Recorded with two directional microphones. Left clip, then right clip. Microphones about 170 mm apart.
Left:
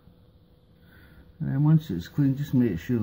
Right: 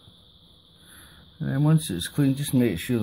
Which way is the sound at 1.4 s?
40° right (ahead or behind).